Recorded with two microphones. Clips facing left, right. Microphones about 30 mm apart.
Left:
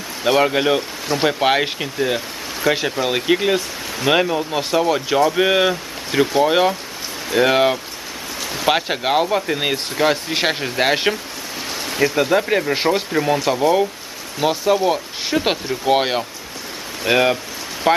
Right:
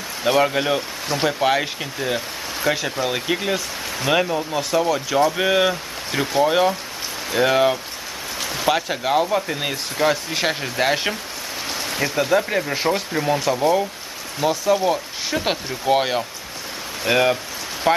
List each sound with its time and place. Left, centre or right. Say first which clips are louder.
0.2 s speech: left 2 dB; centre
1.2 s speech: left 2 dB; left
1.8 s speech: left 3 dB; centre
13.1 s speech: left 2 dB; centre
14.4 s speech: left 2 dB; left